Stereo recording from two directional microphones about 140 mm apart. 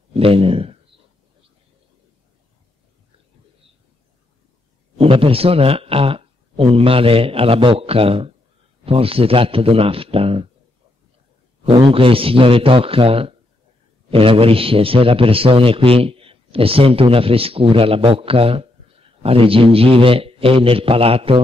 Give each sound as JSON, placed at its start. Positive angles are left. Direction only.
{"t": 0.1, "sound": "speech", "side_deg": -40}
{"t": 4.9, "sound": "a man's voice", "side_deg": -40}
{"t": 11.6, "sound": "a man's voice", "side_deg": -40}